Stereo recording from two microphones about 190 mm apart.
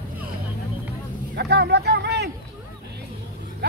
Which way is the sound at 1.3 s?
60° right (ahead or behind).